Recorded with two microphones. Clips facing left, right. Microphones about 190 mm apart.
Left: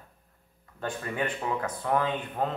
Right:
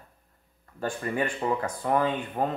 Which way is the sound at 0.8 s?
10° right (ahead or behind).